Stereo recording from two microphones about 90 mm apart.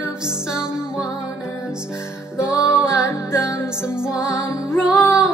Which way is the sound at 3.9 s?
10° right (ahead or behind).